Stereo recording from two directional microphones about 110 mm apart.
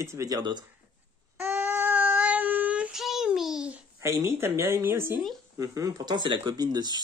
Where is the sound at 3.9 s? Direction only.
25° right (ahead or behind).